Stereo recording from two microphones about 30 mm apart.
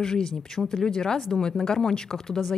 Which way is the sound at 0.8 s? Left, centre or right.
Left.